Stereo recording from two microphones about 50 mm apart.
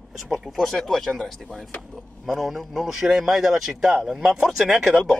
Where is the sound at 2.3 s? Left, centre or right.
Centre.